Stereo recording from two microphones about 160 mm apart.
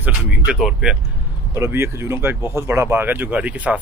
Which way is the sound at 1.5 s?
15° right (ahead or behind).